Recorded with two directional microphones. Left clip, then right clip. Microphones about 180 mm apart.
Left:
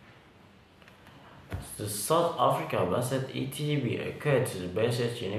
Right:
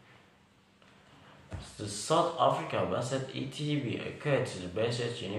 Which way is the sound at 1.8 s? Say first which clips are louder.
Left 2 dB; 20° left (ahead or behind).